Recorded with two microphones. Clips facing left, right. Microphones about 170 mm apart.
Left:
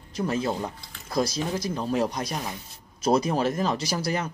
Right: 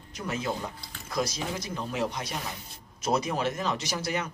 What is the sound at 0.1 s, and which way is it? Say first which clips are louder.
Speech: left 5 dB; 35° left (ahead or behind).